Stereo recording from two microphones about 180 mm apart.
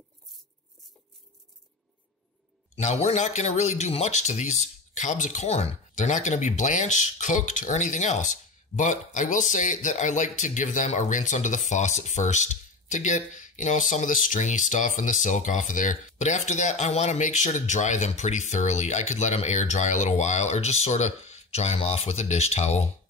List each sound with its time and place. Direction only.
2.7 s speech: 40° left (ahead or behind)